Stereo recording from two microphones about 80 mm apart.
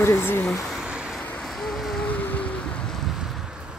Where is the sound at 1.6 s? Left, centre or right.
Centre.